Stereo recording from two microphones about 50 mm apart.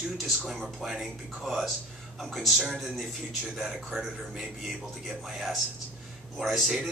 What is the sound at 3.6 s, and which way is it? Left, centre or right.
A man's voice, centre.